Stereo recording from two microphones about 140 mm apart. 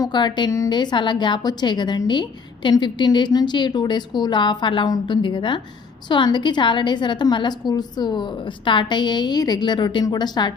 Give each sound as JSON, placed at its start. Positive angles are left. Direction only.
{"t": 0.0, "sound": "a woman's voice", "side_deg": 30}